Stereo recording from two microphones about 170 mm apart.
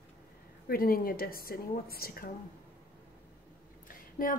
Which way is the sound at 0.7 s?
60° left (ahead or behind).